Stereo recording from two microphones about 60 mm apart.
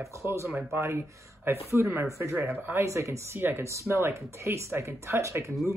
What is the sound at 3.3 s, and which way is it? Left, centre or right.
Speech, right.